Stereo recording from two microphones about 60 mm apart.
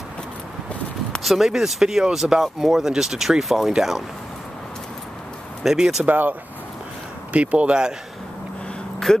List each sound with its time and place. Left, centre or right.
1.2 s speech: centre
5.6 s speech: centre
6.0 s speech: right
7.3 s speech: centre
9.1 s speech: centre